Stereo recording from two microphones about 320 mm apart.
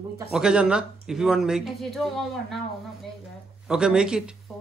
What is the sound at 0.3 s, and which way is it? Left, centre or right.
Speech, centre.